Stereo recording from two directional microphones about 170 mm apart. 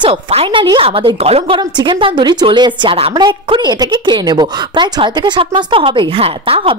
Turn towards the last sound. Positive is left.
turn(degrees=-30)  # may be behind; listen again after turning